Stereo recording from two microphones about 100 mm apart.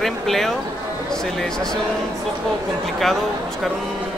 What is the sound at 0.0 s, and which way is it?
Speech, 5° left (ahead or behind).